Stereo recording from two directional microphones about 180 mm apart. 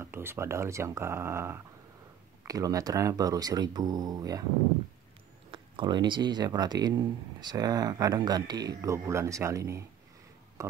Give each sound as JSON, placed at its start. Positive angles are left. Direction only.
{"t": 0.0, "sound": "speech", "side_deg": -15}
{"t": 5.5, "sound": "speech", "side_deg": -25}
{"t": 10.6, "sound": "a sound", "side_deg": -15}